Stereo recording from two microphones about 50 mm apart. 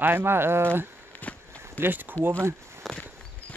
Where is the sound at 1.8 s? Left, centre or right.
Right.